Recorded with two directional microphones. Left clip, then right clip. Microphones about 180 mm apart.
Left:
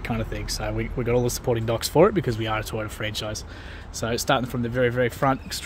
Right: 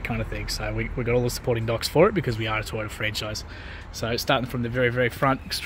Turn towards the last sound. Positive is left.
turn(degrees=0)  # may be behind; listen again after turning